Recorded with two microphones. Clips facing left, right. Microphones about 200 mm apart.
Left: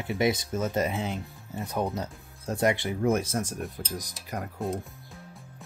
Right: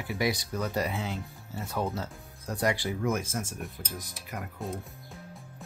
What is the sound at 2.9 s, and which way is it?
Speech, 35° left (ahead or behind).